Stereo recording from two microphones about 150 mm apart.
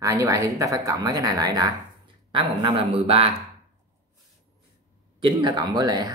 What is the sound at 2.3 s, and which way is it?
Speech, 35° right (ahead or behind).